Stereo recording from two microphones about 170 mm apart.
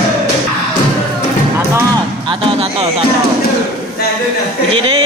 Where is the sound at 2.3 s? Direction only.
35° right (ahead or behind).